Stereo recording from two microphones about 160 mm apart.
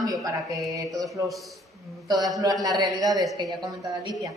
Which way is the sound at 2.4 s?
20° right (ahead or behind).